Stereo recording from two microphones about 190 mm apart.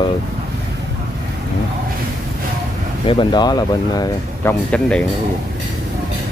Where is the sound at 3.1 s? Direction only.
25° left (ahead or behind); by 5.0 s 5° left (ahead or behind).